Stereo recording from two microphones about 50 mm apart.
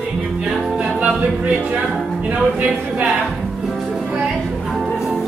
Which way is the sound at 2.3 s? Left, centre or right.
Right.